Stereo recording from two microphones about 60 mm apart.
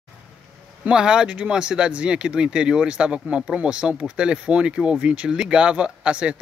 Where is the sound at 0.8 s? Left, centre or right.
Centre.